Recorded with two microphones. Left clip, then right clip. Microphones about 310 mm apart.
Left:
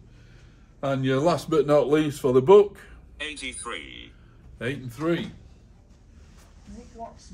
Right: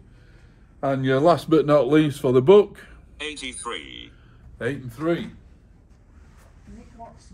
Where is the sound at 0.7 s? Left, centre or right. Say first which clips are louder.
Right 3 dB; centre.